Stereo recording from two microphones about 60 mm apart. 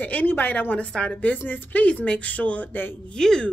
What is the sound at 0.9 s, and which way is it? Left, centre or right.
Speech, centre.